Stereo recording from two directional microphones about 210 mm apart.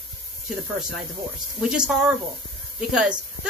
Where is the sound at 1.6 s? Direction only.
5° right (ahead or behind).